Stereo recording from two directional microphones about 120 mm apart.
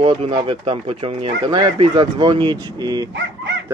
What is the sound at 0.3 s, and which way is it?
Speech, 40° right (ahead or behind).